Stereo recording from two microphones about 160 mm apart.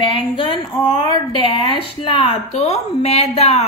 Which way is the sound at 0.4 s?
30° left (ahead or behind).